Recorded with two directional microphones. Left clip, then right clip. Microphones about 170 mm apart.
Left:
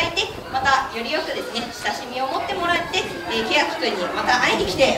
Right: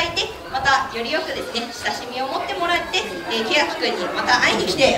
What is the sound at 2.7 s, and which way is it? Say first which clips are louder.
Chatter: right 1 dB; 35° right (ahead or behind).